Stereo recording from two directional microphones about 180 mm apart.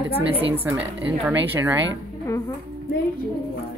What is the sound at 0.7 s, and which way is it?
A woman's voice, 10° right (ahead or behind).